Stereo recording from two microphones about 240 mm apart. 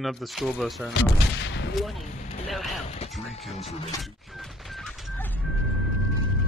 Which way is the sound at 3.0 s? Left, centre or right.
Left.